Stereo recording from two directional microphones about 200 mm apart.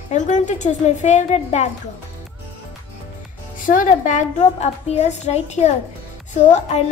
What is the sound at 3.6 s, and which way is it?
A woman's voice, 40° left (ahead or behind).